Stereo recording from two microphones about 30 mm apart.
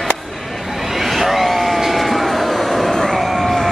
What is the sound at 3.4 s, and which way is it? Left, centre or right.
Music, centre.